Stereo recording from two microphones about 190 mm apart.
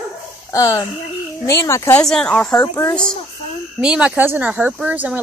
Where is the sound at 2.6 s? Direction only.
15° left (ahead or behind).